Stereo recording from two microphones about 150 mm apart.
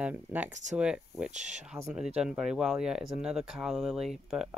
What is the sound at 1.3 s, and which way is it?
Speech, 50° right (ahead or behind).